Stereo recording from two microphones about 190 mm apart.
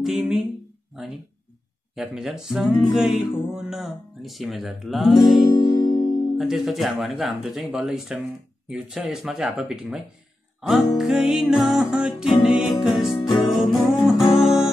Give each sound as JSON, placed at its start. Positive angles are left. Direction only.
{"t": 0.0, "sound": "speech", "side_deg": -5}
{"t": 2.0, "sound": "speech", "side_deg": -5}
{"t": 5.5, "sound": "music", "side_deg": 20}
{"t": 6.3, "sound": "speech", "side_deg": 0}
{"t": 13.5, "sound": "music", "side_deg": 0}